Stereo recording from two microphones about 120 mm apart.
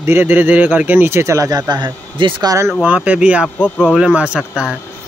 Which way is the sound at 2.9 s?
10° right (ahead or behind).